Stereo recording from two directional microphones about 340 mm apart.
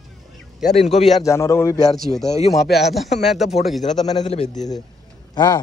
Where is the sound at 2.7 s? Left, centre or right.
Centre.